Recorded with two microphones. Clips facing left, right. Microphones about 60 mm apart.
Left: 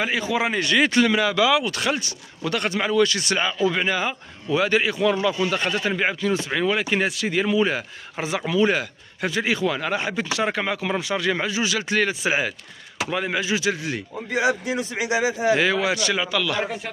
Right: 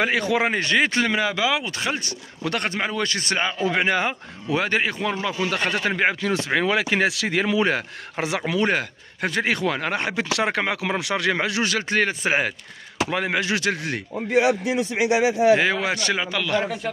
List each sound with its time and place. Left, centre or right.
0.0 s speech: right
0.5 s speech: right
2.0 s a man's voice: right
3.5 s a man's voice: right
5.4 s a man's voice: right
6.8 s speech: right
8.5 s speech: right
11.7 s a man's voice: right
13.1 s speech: right
15.5 s a man's voice: right